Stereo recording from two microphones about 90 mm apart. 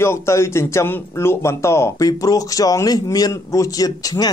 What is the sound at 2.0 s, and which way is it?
A man's voice, 40° left (ahead or behind).